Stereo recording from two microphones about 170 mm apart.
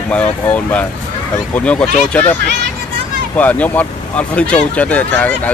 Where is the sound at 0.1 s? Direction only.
10° left (ahead or behind).